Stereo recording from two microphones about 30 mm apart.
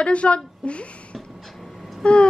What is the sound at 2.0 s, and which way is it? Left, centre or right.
Speech, left.